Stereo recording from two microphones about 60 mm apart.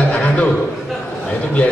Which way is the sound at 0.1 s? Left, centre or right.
Left.